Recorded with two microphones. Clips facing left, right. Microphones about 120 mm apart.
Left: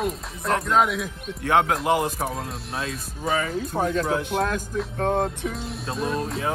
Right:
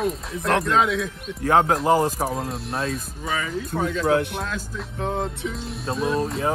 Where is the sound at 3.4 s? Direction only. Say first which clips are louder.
Right 1 dB; 30° left (ahead or behind).